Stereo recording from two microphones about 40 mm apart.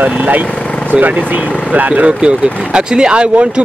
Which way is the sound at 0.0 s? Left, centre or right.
Right.